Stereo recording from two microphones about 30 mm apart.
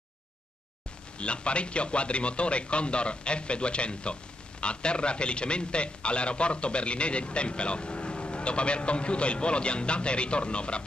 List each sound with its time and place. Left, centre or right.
1.1 s speech: left